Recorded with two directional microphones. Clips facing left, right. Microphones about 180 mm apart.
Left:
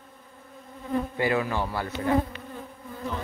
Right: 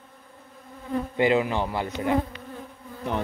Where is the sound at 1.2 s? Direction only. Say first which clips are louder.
Right 6 dB; 20° right (ahead or behind).